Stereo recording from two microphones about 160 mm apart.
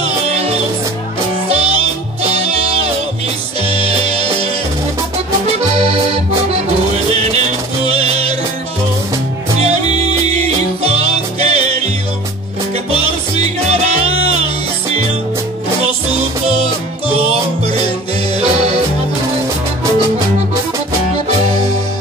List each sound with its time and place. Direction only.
0.3 s music: 40° right (ahead or behind)
5.8 s accordion: 40° right (ahead or behind)
7.2 s music: 40° right (ahead or behind)
9.6 s music: 40° right (ahead or behind)
13.7 s music: 40° right (ahead or behind)
18.4 s music: 40° right (ahead or behind)